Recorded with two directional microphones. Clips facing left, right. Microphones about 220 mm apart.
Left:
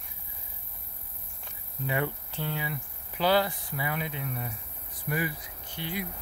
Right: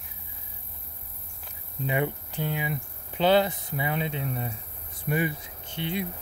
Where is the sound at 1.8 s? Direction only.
20° right (ahead or behind).